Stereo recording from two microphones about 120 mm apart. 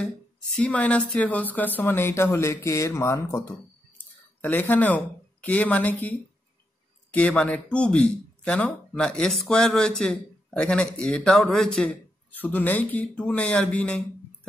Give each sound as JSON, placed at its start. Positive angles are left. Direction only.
{"t": 0.6, "sound": "a woman's voice", "side_deg": 10}
{"t": 7.1, "sound": "speech", "side_deg": 10}